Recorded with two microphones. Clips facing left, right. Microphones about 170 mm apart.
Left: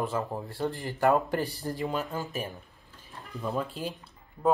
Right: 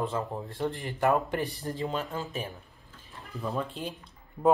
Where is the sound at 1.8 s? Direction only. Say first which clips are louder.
Left 1 dB; 5° left (ahead or behind).